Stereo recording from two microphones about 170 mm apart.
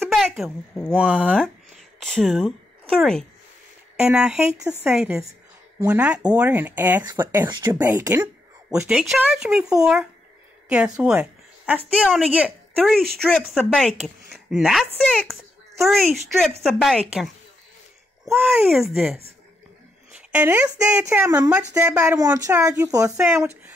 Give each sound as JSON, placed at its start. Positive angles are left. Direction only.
{"t": 0.0, "sound": "speech", "side_deg": 0}
{"t": 1.3, "sound": "a sound", "side_deg": 5}
{"t": 4.0, "sound": "speech", "side_deg": -5}
{"t": 7.4, "sound": "speech", "side_deg": -25}
{"t": 7.9, "sound": "speech", "side_deg": -10}
{"t": 10.7, "sound": "a woman's voice", "side_deg": -5}
{"t": 18.2, "sound": "speech", "side_deg": 0}